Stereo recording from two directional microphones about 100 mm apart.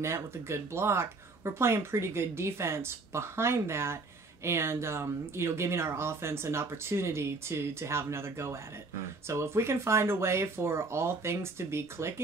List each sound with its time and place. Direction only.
0.0 s speech: 25° right (ahead or behind)